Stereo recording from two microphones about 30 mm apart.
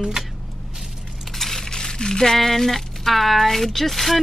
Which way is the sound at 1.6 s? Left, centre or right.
Left.